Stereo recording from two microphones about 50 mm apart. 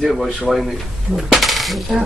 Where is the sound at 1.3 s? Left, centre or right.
Centre.